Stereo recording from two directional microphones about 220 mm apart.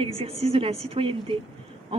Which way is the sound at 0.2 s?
25° right (ahead or behind).